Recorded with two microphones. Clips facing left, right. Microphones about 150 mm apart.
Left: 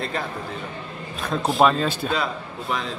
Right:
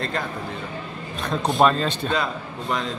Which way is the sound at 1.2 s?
Centre (ahead or behind).